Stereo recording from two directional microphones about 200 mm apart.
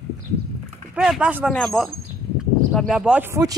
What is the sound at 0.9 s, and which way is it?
Speech, 5° right (ahead or behind).